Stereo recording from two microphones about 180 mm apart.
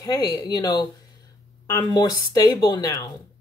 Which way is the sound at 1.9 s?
20° left (ahead or behind).